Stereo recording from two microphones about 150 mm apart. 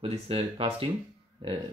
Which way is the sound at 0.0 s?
40° right (ahead or behind).